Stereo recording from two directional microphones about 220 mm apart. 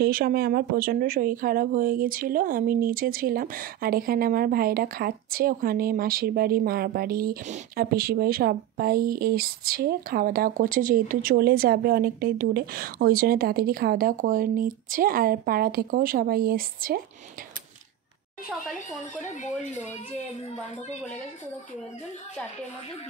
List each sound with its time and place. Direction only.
0.0 s speech: 40° right (ahead or behind)
19.4 s speech: 30° left (ahead or behind)